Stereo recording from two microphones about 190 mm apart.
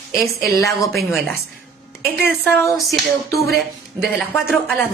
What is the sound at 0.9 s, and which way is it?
A woman's voice, centre (ahead or behind).